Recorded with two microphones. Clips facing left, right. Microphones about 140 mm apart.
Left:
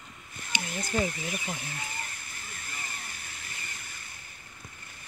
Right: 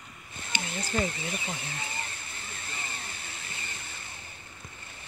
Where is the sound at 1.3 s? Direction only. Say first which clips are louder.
Even; 25° right (ahead or behind).